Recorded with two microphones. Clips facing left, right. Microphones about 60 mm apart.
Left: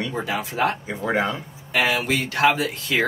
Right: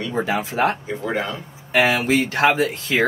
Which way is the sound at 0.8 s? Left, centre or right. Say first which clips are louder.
Left 1 dB; centre.